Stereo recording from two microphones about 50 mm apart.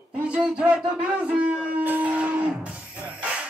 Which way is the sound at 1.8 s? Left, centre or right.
Right.